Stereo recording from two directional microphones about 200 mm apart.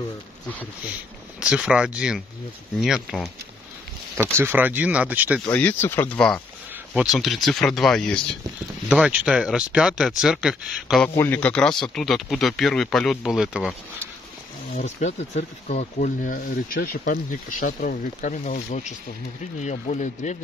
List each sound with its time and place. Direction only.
1.4 s speech: 5° right (ahead or behind)
4.2 s speech: 10° right (ahead or behind)
5.5 s speech: 10° left (ahead or behind)
11.1 s speech: 10° left (ahead or behind)
14.8 s speech: 35° left (ahead or behind)